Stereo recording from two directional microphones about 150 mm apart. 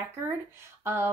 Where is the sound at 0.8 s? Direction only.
15° right (ahead or behind).